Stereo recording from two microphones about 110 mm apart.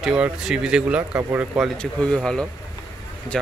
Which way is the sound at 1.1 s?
20° right (ahead or behind).